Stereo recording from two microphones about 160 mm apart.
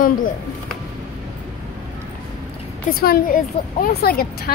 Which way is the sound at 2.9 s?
70° left (ahead or behind).